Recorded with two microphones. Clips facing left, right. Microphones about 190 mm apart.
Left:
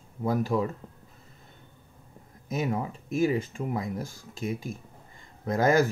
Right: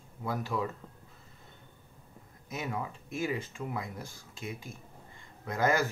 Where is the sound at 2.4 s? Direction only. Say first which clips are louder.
Left 7 dB; 45° left (ahead or behind).